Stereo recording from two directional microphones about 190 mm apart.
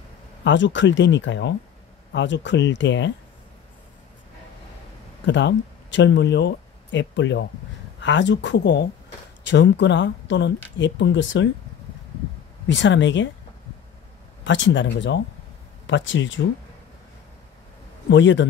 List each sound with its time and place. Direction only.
0.4 s speech: 70° left (ahead or behind)
5.2 s speech: 70° left (ahead or behind)
12.6 s speech: 70° left (ahead or behind)
14.4 s speech: 75° left (ahead or behind)
18.1 s speech: 75° left (ahead or behind)